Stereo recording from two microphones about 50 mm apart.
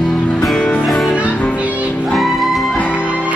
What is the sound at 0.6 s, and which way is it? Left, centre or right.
Music, left.